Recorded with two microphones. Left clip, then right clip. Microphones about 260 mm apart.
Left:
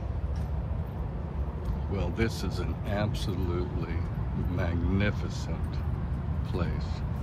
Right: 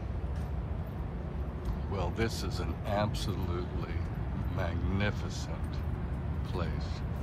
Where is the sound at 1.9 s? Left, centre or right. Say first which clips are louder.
Left 2 dB; centre.